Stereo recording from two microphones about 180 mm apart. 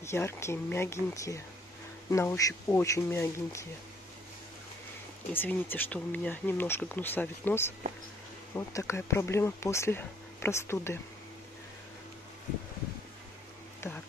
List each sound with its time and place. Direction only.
0.0 s speech: 15° left (ahead or behind)
5.3 s speech: 10° left (ahead or behind)